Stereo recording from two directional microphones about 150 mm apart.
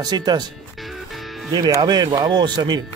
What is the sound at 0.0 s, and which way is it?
Speech, 25° right (ahead or behind).